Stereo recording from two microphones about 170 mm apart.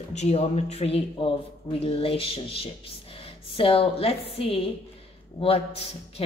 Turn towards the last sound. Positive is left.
turn(degrees=35)  # may be behind; listen again after turning